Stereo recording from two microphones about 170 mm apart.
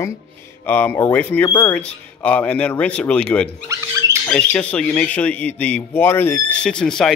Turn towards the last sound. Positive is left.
turn(degrees=5)  # may be behind; listen again after turning